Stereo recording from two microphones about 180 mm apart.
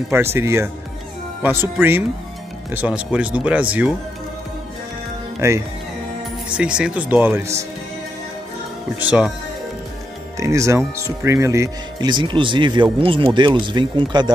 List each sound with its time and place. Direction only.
0.1 s speech: 15° right (ahead or behind)
5.4 s speech: 15° right (ahead or behind)
10.4 s speech: 15° right (ahead or behind)